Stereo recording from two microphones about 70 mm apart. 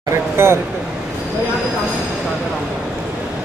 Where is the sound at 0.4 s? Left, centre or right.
Right.